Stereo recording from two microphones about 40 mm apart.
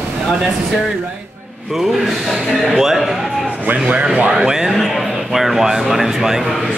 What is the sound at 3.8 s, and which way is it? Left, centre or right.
A man's voice, right.